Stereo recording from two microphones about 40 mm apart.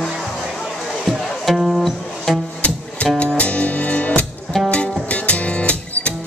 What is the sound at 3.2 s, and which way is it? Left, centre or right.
Music, left.